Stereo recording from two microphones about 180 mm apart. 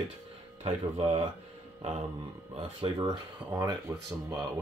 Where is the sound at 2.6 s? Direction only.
25° right (ahead or behind).